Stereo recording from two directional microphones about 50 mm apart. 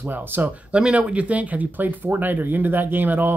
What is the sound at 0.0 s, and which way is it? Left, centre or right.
Speech, right.